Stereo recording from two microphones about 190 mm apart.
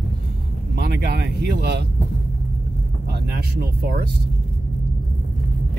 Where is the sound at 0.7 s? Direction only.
60° right (ahead or behind).